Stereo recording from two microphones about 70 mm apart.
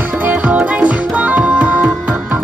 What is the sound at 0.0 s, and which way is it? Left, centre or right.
Music, right.